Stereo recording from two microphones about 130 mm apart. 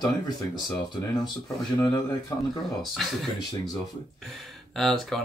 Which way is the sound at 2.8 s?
Centre (ahead or behind).